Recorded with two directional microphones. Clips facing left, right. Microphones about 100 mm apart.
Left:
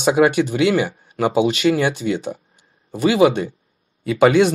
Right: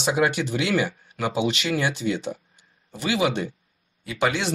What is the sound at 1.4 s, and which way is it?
Speech, 45° left (ahead or behind).